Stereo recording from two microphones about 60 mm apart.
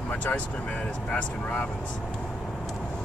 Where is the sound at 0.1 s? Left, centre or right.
Left.